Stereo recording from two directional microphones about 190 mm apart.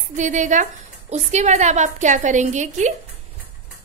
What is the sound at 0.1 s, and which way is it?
A woman's voice, 40° right (ahead or behind).